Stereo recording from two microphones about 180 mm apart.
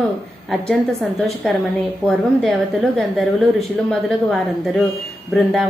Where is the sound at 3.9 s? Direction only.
Centre (ahead or behind).